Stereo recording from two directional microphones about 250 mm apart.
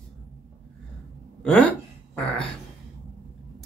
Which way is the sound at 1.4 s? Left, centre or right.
Centre.